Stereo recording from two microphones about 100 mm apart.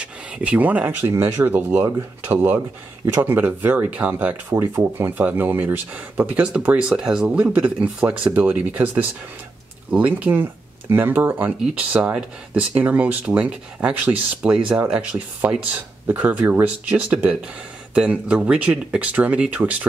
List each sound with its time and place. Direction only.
0.0 s speech: 10° right (ahead or behind)